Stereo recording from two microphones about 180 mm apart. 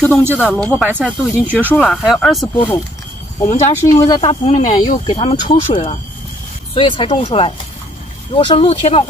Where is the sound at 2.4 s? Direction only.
25° left (ahead or behind).